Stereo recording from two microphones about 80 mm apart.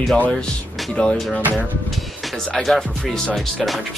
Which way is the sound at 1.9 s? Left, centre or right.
Centre.